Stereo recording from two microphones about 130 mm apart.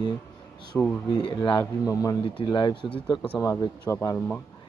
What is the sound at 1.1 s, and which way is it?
Speech, 40° left (ahead or behind).